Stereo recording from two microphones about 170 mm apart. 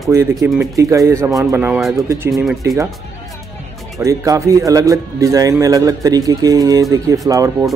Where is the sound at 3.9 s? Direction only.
20° right (ahead or behind).